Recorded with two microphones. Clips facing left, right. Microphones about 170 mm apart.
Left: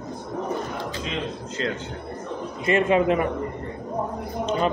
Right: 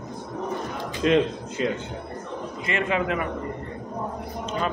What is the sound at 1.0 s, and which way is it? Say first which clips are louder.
Speech: right 15 dB; 65° right (ahead or behind).